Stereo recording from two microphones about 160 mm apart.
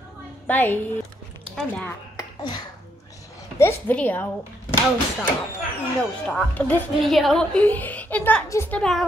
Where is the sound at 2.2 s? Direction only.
25° left (ahead or behind).